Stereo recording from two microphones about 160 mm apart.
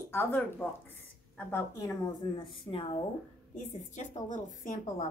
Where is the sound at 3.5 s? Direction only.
50° left (ahead or behind).